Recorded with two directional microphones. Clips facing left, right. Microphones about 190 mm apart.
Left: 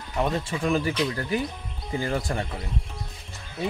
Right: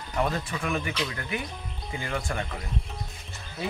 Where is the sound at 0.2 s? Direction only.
25° left (ahead or behind).